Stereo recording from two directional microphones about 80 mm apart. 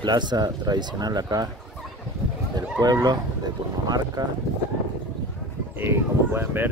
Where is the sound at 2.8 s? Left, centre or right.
Right.